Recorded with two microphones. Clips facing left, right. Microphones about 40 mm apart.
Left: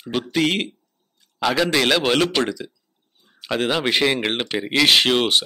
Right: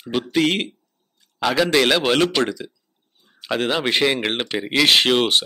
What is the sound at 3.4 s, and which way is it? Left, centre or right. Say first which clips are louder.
Speech: even; centre.